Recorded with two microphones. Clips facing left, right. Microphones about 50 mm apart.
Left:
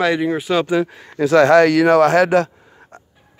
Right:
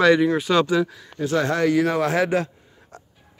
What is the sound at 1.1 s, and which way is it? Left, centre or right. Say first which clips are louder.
A man's voice: left 11 dB; left.